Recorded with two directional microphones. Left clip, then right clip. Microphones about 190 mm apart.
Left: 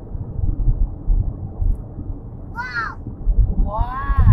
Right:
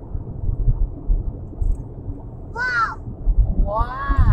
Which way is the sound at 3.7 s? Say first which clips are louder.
Right 2 dB; 25° right (ahead or behind).